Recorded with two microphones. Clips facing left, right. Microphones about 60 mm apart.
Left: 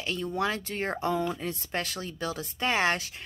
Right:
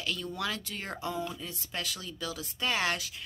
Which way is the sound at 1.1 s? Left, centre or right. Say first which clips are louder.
Left 7 dB; left.